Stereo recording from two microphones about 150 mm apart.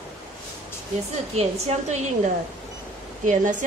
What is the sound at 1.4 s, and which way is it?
A woman's voice, 50° right (ahead or behind).